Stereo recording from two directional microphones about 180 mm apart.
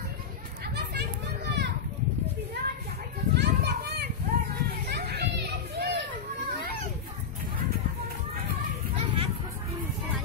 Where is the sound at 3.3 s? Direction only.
65° right (ahead or behind).